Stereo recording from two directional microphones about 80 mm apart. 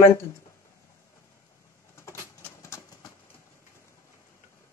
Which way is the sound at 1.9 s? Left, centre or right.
Left.